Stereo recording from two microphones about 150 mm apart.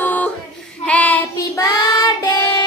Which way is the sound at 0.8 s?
10° left (ahead or behind).